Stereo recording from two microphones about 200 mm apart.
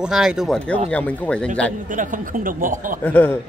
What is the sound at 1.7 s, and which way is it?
Speech, 40° right (ahead or behind).